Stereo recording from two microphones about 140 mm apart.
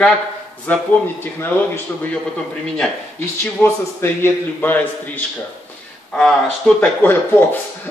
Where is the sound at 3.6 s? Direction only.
15° left (ahead or behind).